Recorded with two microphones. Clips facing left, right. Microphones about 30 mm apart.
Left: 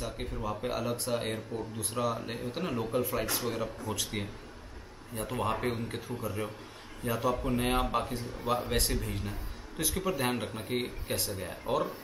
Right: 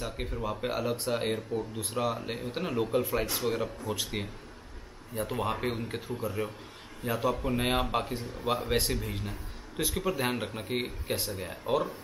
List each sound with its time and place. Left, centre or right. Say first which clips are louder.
0.0 s speech: right 2 dB; centre